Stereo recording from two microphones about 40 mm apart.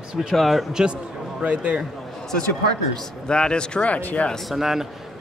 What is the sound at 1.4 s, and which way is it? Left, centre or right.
Speech, right.